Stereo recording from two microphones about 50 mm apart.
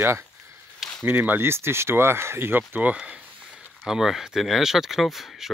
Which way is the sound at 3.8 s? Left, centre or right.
Centre.